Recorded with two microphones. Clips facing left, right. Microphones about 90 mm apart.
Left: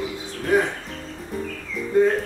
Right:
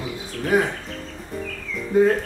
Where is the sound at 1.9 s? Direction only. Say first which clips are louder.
Right 1 dB; 5° right (ahead or behind).